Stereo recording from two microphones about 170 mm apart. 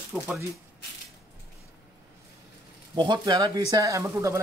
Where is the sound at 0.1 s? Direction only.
5° right (ahead or behind).